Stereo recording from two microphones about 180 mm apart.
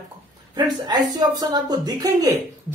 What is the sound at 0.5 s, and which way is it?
A man's voice, 25° right (ahead or behind).